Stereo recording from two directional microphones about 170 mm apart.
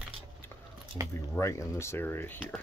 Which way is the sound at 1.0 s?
20° right (ahead or behind).